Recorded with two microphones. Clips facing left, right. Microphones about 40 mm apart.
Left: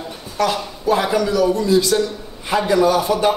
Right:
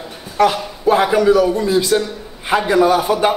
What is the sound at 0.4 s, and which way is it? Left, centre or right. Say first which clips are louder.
A man's voice: right 5 dB; right.